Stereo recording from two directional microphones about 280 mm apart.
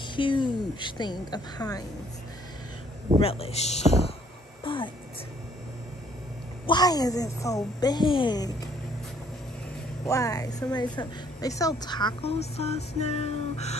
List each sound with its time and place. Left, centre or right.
0.0 s a woman's voice: centre
3.2 s speech: left
4.6 s speech: centre
6.6 s a woman's voice: centre
10.0 s a woman's voice: centre